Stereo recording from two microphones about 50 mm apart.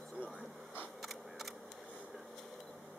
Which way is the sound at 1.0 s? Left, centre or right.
Centre.